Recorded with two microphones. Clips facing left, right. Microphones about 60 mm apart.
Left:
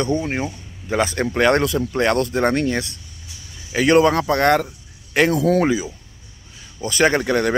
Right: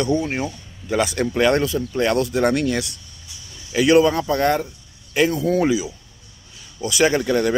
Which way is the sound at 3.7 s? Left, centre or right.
Left.